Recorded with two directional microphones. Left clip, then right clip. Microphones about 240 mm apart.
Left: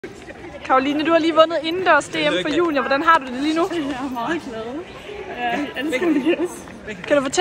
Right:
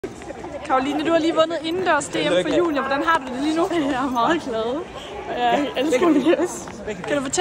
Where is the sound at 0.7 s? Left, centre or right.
Centre.